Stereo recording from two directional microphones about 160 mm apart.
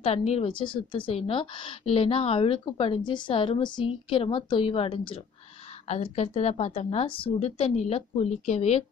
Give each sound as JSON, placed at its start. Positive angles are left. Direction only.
{"t": 0.0, "sound": "a woman's voice", "side_deg": 40}